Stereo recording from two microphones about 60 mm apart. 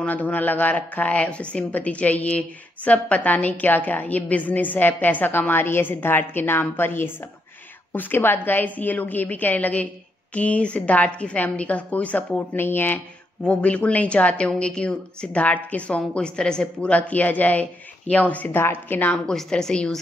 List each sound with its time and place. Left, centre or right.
0.0 s speech: left
13.4 s a woman's voice: left
19.2 s a woman's voice: centre